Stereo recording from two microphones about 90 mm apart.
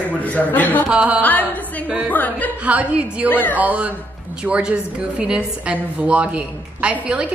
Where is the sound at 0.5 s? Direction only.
20° left (ahead or behind).